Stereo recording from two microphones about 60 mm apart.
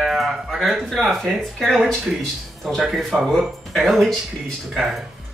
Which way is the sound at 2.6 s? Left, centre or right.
Centre.